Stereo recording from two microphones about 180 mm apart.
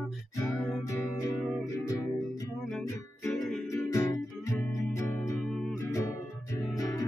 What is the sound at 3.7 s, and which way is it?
Music, 15° left (ahead or behind).